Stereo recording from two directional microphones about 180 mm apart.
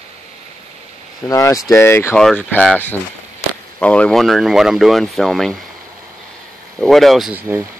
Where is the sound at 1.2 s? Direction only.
15° left (ahead or behind).